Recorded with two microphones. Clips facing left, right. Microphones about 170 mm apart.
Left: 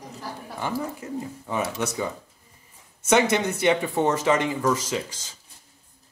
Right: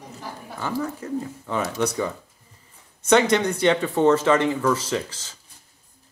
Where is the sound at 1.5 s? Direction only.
10° left (ahead or behind).